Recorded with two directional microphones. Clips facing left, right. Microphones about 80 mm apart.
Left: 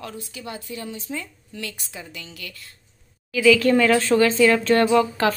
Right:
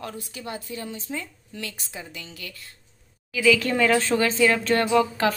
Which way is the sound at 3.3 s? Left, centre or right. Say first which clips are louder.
Left 5 dB; centre.